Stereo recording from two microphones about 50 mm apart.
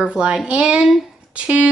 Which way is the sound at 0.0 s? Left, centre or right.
Centre.